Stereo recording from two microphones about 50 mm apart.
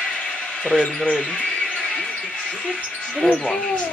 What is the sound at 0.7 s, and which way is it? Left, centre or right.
Speech, centre.